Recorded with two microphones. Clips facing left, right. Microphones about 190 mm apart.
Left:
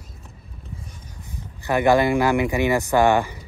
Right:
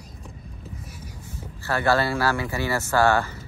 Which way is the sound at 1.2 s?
15° left (ahead or behind).